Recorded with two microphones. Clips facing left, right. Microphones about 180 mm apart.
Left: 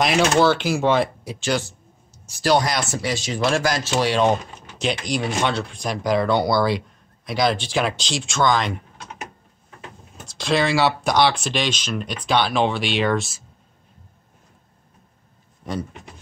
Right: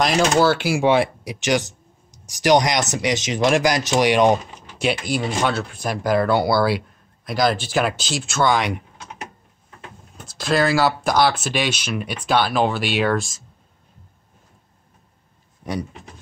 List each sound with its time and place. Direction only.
0.0 s speech: centre (ahead or behind)
10.1 s speech: centre (ahead or behind)
15.6 s speech: 15° right (ahead or behind)